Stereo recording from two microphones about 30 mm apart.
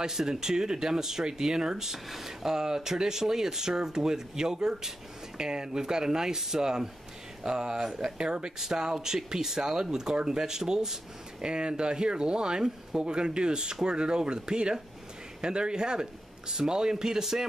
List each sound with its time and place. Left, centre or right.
0.0 s speech: centre
2.0 s speech: centre
8.2 s speech: right
11.4 s speech: right; by 17.5 s centre